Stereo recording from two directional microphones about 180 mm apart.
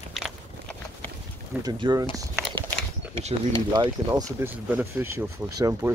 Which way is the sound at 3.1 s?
30° right (ahead or behind).